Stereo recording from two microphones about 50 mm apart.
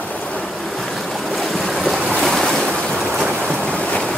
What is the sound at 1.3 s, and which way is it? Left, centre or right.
Waves, centre.